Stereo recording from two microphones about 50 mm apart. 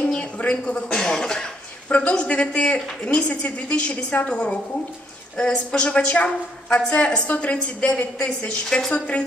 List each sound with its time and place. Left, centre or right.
0.2 s speech: left
1.9 s a woman's voice: left
8.9 s a woman's voice: left